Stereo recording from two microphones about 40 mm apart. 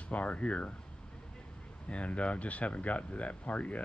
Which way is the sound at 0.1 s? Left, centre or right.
Left.